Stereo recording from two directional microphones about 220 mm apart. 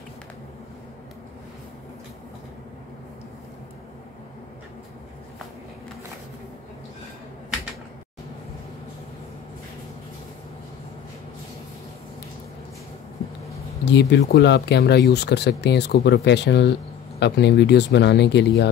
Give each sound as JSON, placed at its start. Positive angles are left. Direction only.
{"t": 13.8, "sound": "speech", "side_deg": 50}